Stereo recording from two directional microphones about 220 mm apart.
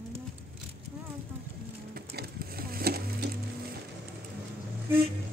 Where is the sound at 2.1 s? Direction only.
45° right (ahead or behind).